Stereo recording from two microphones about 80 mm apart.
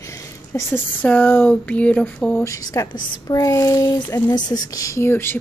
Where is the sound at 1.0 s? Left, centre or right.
Left.